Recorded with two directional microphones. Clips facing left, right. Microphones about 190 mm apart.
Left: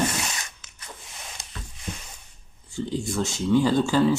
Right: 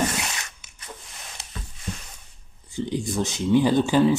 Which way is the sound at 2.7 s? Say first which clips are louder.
Right 1 dB; 15° right (ahead or behind).